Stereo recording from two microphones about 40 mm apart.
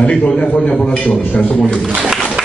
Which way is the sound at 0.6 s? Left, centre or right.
Left.